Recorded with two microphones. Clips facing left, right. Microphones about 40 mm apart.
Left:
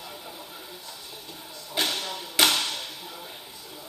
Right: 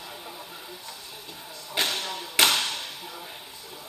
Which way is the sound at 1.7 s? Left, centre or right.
Right.